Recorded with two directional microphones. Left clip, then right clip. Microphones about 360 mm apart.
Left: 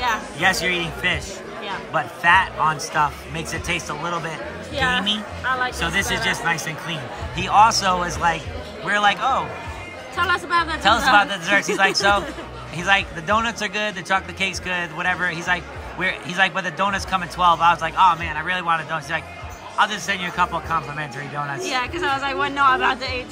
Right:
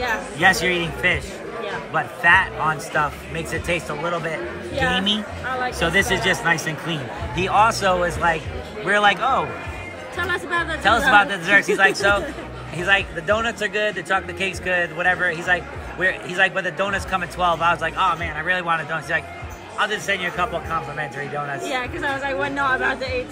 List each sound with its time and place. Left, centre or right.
0.4 s a man's voice: centre
10.1 s a woman's voice: left
10.8 s a man's voice: centre
21.7 s a woman's voice: left